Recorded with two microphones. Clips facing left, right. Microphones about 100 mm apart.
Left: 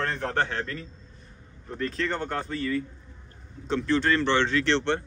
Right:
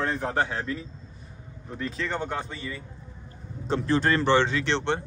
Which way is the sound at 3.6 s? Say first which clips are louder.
Even; 35° right (ahead or behind).